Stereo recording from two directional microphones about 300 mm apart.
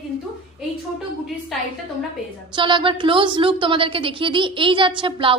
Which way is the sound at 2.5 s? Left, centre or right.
Centre.